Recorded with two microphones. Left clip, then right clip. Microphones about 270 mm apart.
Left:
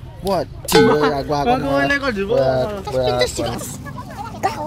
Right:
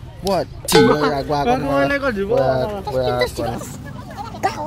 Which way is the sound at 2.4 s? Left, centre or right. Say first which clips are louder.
Left 1 dB; centre.